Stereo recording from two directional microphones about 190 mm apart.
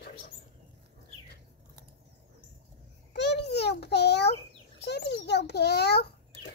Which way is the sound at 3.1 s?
60° left (ahead or behind).